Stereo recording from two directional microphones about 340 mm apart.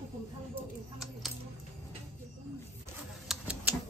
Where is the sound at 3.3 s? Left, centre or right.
Centre.